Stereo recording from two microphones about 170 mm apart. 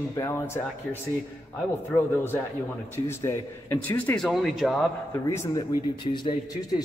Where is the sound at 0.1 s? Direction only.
15° left (ahead or behind).